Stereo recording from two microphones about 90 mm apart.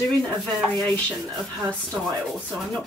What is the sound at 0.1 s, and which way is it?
Speech, centre (ahead or behind).